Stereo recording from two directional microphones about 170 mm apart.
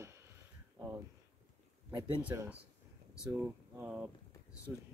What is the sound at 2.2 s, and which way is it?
Speech, 10° right (ahead or behind).